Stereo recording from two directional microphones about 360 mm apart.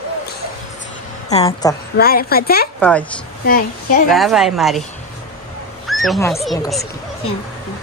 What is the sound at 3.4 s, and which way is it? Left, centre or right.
Speech, left.